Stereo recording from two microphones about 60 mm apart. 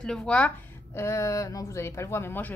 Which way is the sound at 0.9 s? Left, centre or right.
Left.